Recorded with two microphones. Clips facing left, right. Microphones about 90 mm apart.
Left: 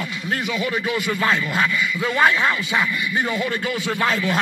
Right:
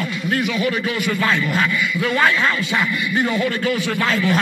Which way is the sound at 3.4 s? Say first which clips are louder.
Right 3 dB; 20° left (ahead or behind).